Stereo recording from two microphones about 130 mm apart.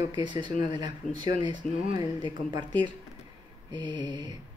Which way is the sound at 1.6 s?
90° left.